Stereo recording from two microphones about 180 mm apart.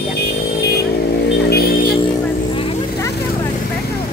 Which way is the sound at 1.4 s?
60° left (ahead or behind).